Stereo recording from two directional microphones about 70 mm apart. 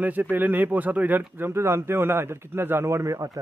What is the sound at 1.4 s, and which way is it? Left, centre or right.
A man's voice, right.